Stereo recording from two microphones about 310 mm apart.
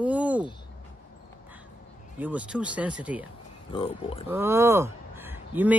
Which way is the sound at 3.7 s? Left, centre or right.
Centre.